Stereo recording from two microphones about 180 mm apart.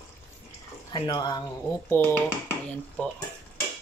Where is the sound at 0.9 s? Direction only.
25° left (ahead or behind).